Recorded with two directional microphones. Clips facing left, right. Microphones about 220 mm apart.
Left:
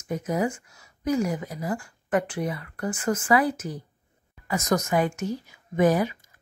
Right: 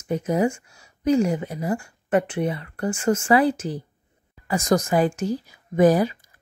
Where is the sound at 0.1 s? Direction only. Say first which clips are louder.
Right 4 dB; 30° right (ahead or behind).